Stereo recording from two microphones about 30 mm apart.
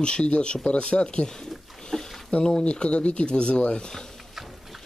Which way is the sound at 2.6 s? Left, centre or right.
Left.